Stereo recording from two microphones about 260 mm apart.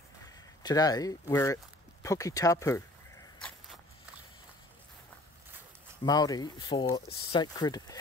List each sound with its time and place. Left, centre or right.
0.6 s speech: centre
6.0 s speech: centre